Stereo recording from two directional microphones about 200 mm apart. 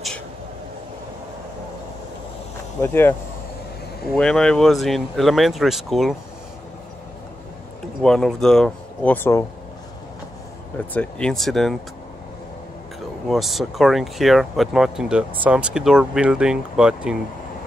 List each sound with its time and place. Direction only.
2.8 s speech: 10° left (ahead or behind)
8.0 s speech: 5° left (ahead or behind)
10.9 s speech: 5° left (ahead or behind)
13.3 s speech: centre (ahead or behind)